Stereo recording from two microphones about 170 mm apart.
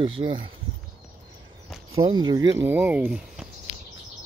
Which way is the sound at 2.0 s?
25° right (ahead or behind).